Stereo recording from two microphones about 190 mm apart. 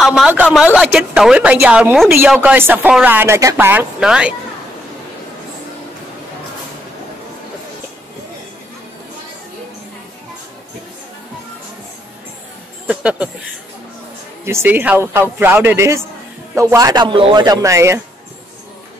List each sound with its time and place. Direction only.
0.0 s a man's voice: 5° right (ahead or behind)
12.8 s speech: 5° right (ahead or behind)
14.4 s a man's voice: 15° right (ahead or behind)